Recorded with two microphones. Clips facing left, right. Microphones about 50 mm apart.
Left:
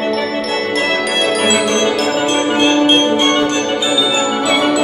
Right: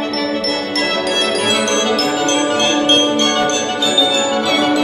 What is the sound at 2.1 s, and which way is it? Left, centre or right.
Music, centre.